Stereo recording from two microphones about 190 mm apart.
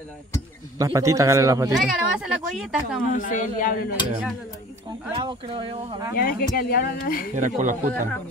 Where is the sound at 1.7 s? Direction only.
5° right (ahead or behind).